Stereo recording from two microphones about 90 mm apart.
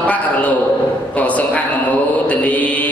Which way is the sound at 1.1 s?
15° left (ahead or behind).